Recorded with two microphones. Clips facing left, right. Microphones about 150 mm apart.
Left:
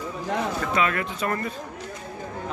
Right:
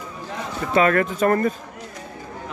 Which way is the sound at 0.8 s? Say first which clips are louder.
Right 8 dB; 45° right (ahead or behind).